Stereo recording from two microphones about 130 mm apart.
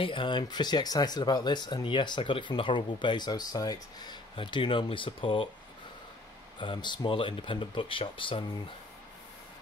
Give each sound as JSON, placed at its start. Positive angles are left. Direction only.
{"t": 0.0, "sound": "speech", "side_deg": 40}
{"t": 6.6, "sound": "speech", "side_deg": 40}